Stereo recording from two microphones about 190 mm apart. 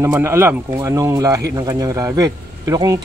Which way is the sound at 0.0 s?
15° right (ahead or behind).